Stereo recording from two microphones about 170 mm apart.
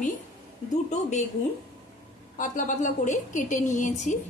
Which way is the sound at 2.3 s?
50° left (ahead or behind).